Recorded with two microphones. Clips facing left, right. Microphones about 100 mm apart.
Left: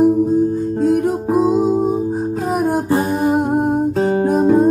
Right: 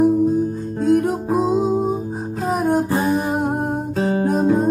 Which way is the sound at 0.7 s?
Centre (ahead or behind).